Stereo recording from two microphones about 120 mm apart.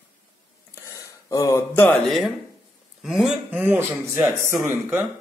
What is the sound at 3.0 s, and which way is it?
Speech, 5° right (ahead or behind).